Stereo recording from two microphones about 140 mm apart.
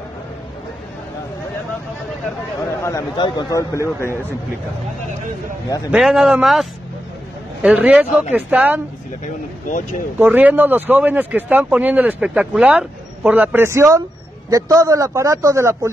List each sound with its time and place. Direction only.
2.6 s a sound: 20° left (ahead or behind)
3.2 s a man's voice: 30° left (ahead or behind)
5.9 s speech: 5° right (ahead or behind)
10.1 s a man's voice: 10° right (ahead or behind)